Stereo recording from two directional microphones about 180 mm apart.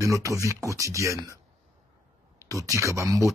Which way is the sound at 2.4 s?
15° right (ahead or behind).